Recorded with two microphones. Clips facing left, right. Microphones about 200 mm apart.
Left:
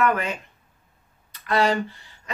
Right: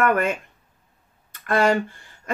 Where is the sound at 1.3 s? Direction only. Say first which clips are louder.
Right 2 dB; 50° right (ahead or behind).